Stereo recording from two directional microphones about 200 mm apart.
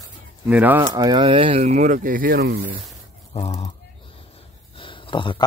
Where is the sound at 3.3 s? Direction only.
30° left (ahead or behind).